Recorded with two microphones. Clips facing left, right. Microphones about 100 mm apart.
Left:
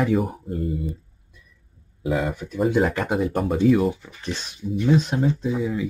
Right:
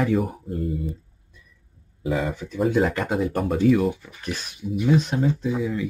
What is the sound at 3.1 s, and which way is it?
Speech, 15° left (ahead or behind).